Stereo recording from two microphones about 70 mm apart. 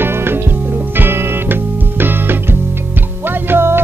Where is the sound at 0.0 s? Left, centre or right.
Right.